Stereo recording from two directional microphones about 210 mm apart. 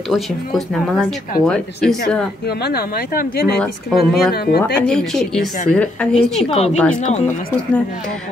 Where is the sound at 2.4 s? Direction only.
50° left (ahead or behind).